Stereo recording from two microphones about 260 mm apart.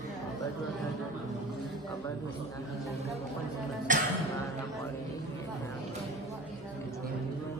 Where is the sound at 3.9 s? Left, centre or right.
Right.